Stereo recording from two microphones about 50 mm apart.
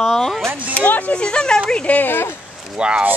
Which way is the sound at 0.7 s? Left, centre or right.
Left.